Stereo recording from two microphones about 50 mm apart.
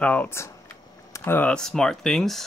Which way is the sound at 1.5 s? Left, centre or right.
Centre.